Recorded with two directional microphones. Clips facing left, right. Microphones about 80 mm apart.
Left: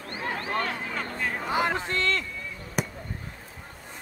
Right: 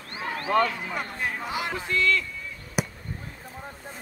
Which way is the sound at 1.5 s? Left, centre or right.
Left.